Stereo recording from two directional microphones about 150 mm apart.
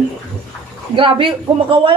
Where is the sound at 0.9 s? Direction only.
35° right (ahead or behind).